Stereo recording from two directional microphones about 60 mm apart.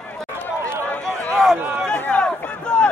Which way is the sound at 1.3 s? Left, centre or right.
Centre.